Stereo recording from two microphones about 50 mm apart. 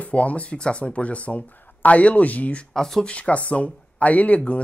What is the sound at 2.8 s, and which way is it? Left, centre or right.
Speech, centre.